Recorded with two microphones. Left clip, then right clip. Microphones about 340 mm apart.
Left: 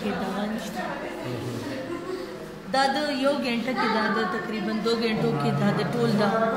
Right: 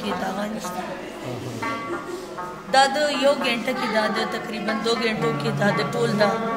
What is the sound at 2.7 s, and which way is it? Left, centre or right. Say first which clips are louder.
Speech: right 5 dB; right.